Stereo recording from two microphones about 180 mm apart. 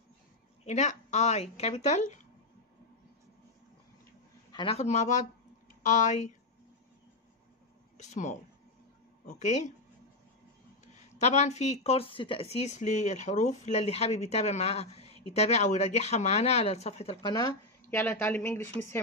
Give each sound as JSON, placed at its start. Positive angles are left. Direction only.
{"t": 0.7, "sound": "speech", "side_deg": 40}
{"t": 4.5, "sound": "a sound", "side_deg": 25}
{"t": 4.7, "sound": "speech", "side_deg": 40}
{"t": 8.0, "sound": "speech", "side_deg": 40}
{"t": 11.1, "sound": "speech", "side_deg": 40}